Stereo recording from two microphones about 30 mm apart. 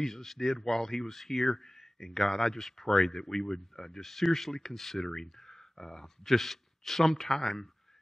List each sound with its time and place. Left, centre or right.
0.0 s speech: centre
5.0 s speech: centre
6.3 s speech: centre